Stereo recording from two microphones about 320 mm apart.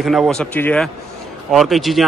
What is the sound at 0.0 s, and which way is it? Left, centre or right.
Speech, centre.